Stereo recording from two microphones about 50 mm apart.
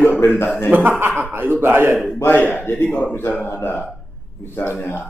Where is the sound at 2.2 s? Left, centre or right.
Left.